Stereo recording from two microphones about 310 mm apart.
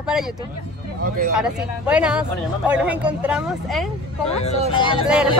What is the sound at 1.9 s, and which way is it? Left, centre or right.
Speech, centre.